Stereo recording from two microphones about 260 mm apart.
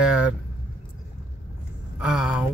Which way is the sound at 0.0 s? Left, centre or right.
Centre.